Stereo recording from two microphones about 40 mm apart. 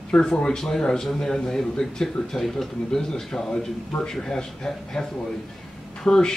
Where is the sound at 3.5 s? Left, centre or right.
Left.